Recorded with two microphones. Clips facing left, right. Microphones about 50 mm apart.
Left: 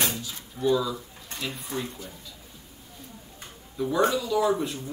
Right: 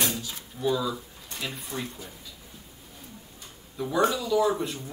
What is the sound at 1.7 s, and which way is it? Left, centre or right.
Speech, left.